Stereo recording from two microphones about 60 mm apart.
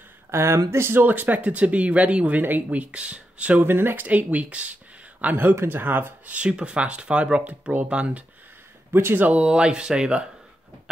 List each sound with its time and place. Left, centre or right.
0.3 s speech: right
1.0 s speech: right
3.6 s speech: right
5.2 s speech: right
6.3 s speech: centre
8.9 s speech: right
9.3 s speech: centre